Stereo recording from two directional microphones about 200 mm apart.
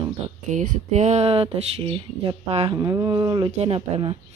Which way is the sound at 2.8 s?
20° right (ahead or behind).